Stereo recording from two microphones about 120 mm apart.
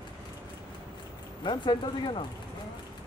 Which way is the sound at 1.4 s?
40° left (ahead or behind).